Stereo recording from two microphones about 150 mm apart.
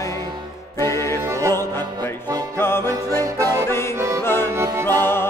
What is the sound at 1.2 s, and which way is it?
Music, 20° right (ahead or behind).